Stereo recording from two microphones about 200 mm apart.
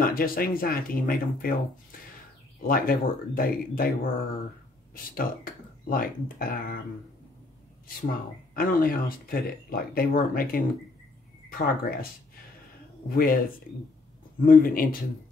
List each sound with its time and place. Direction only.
0.0 s speech: 45° left (ahead or behind)
8.5 s speech: 45° left (ahead or behind)
13.1 s speech: 45° left (ahead or behind)
14.4 s speech: 45° left (ahead or behind)